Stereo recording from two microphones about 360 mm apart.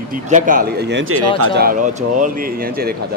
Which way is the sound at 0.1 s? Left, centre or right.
Right.